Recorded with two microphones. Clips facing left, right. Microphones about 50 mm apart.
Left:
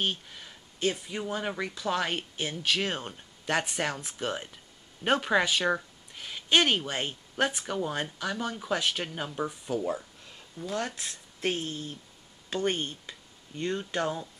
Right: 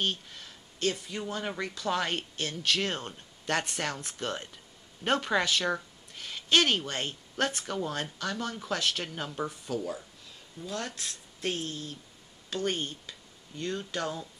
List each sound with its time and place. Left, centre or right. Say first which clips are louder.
0.0 s a woman's voice: left 1 dB; centre